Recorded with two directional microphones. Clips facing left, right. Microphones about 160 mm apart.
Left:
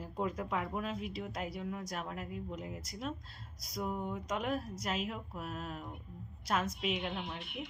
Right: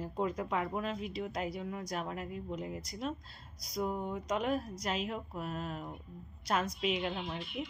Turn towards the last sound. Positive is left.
turn(degrees=60)  # may be behind; listen again after turning